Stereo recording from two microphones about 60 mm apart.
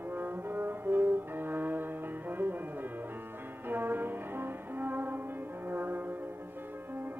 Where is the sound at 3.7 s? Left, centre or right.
Right.